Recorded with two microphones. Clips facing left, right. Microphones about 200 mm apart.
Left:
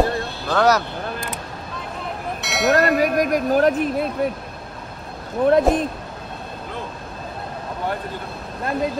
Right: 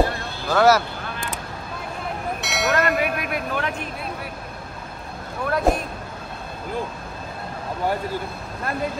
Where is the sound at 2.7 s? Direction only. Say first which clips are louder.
Left 5 dB; 40° left (ahead or behind).